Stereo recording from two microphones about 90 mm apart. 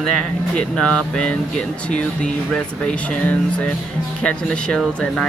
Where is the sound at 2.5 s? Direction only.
15° left (ahead or behind).